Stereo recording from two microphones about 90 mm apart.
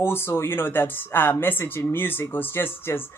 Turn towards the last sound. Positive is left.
turn(degrees=25)  # may be behind; listen again after turning